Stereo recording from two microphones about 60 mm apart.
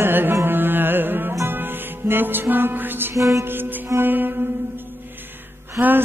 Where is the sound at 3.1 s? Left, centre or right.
Right.